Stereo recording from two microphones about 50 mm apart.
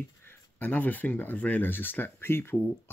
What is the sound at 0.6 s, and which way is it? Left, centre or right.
Speech, left.